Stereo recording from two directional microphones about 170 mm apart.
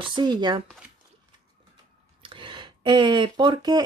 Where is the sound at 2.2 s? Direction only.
30° right (ahead or behind).